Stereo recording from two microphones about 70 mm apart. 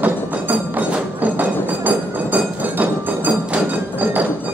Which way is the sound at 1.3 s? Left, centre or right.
Right.